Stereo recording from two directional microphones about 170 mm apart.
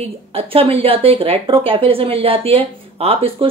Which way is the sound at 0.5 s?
35° right (ahead or behind).